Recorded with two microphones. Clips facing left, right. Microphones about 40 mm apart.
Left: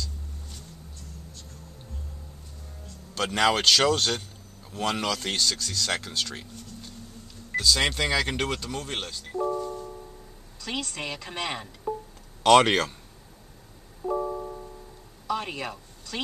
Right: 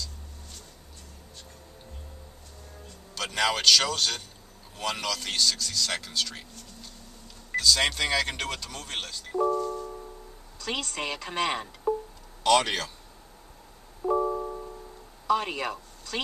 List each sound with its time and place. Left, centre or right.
3.2 s speech: centre
9.5 s music: centre
9.8 s music: centre
10.6 s speech: centre
12.4 s speech: left
14.0 s music: centre
15.2 s a sound: centre